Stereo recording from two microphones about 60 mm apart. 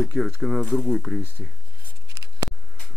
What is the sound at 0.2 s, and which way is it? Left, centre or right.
Speech, centre.